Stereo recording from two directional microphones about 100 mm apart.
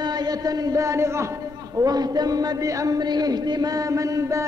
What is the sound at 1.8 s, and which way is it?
A man's voice, 40° right (ahead or behind).